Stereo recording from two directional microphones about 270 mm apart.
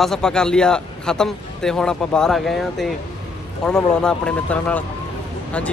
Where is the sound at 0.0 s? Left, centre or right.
Centre.